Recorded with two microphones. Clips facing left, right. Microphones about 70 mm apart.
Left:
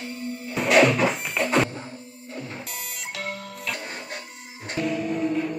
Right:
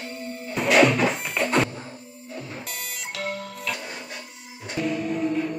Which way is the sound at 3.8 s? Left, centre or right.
Left.